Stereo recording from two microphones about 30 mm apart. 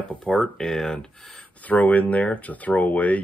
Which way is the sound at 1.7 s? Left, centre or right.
Left.